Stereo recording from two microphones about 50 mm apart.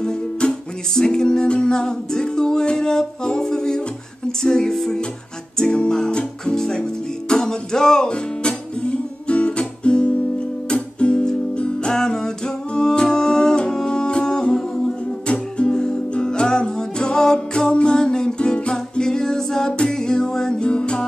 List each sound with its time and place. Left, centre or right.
0.0 s music: centre